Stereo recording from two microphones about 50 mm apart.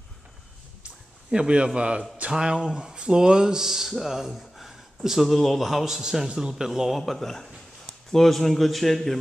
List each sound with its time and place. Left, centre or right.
0.8 s a sound: centre
1.8 s a man's voice: right
7.0 s a man's voice: centre